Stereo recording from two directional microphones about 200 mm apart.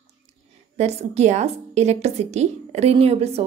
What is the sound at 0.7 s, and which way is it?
A woman's voice, 35° right (ahead or behind).